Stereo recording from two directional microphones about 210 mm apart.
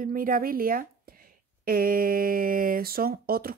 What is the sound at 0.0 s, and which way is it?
Speech, 40° right (ahead or behind).